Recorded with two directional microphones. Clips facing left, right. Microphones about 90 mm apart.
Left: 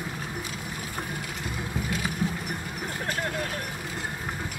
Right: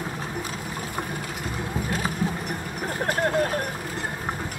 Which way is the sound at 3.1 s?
45° right (ahead or behind).